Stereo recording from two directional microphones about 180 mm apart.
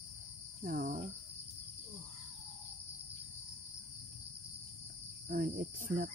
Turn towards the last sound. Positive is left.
turn(degrees=-50)  # may be behind; listen again after turning